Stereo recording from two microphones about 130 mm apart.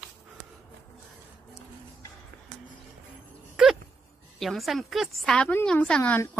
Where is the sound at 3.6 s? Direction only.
5° right (ahead or behind).